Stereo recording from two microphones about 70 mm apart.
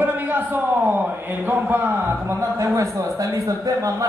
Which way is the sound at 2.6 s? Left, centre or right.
Right.